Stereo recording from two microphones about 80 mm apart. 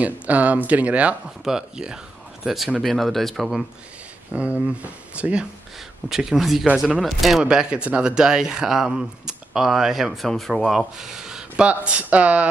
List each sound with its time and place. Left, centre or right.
0.0 s speech: centre
4.3 s speech: centre
7.4 s speech: centre